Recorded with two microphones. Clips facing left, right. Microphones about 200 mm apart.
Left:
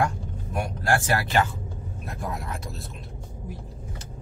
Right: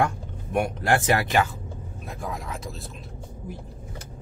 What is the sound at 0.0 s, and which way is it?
Speech, 20° right (ahead or behind).